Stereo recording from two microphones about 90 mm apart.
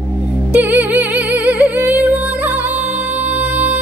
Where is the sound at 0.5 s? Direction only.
20° right (ahead or behind).